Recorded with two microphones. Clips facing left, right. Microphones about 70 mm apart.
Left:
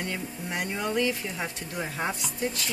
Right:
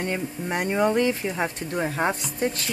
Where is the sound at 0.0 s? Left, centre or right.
Right.